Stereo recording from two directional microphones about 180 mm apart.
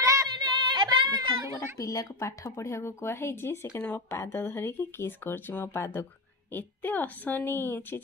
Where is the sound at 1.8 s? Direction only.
20° left (ahead or behind).